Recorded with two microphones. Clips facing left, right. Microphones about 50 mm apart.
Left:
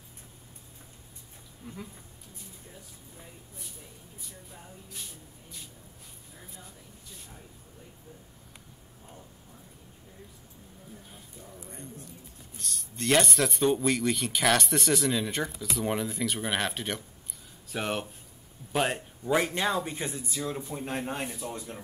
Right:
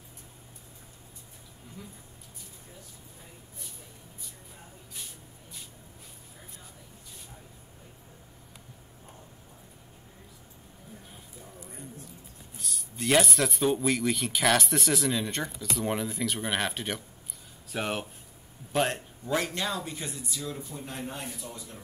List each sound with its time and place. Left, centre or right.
12.5 s speech: centre
19.3 s a man's voice: left